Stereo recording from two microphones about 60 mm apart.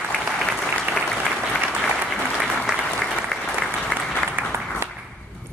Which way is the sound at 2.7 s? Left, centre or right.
Centre.